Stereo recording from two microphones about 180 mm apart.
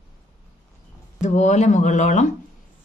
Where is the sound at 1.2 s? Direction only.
40° left (ahead or behind).